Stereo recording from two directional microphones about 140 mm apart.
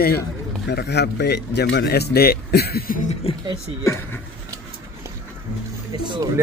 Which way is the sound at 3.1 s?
45° left (ahead or behind).